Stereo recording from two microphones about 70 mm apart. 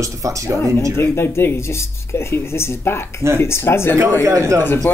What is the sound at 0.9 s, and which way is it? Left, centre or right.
Speech, left.